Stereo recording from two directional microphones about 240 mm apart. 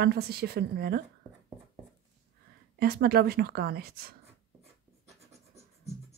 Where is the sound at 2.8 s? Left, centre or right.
Right.